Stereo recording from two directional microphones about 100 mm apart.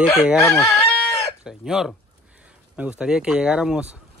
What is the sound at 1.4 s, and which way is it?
Speech, 5° right (ahead or behind).